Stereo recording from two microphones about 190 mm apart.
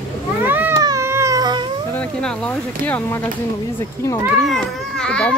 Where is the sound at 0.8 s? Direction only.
15° right (ahead or behind).